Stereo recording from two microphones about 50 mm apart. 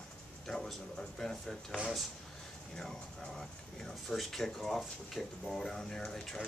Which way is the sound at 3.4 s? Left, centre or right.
Centre.